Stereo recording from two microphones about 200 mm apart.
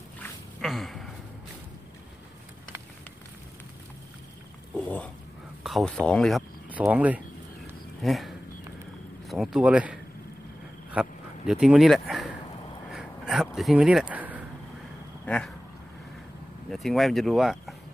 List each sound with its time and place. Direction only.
0.2 s a sound: centre (ahead or behind)
4.7 s pig: 5° left (ahead or behind)
5.6 s speech: centre (ahead or behind)
10.9 s a sound: 5° right (ahead or behind)
13.6 s speech: centre (ahead or behind)
15.2 s speech: 5° left (ahead or behind)
16.7 s speech: centre (ahead or behind)